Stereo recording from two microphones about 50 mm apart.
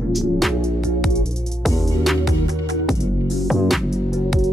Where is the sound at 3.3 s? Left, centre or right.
Centre.